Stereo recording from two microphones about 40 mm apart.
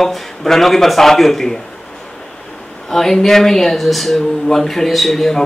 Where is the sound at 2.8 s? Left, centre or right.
Centre.